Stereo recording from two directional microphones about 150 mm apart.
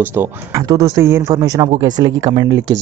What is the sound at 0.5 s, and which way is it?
Speech, 25° right (ahead or behind).